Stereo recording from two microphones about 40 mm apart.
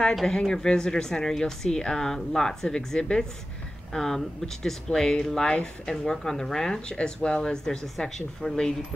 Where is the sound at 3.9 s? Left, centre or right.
Centre.